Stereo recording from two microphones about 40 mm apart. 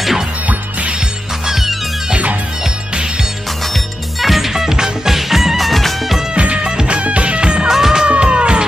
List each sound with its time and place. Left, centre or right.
0.5 s music: right
1.4 s music: centre
3.6 s music: centre
6.3 s music: right
7.6 s music: centre
8.0 s music: right